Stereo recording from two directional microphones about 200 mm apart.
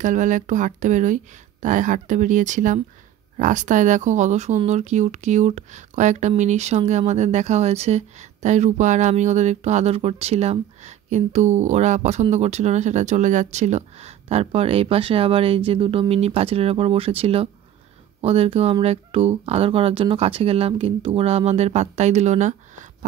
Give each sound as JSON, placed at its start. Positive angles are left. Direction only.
{"t": 0.0, "sound": "speech", "side_deg": -40}